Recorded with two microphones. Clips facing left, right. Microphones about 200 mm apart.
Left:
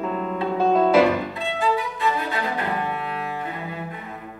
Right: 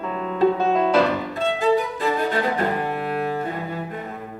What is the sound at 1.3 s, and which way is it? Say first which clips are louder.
Violin: right 4 dB; 45° right (ahead or behind).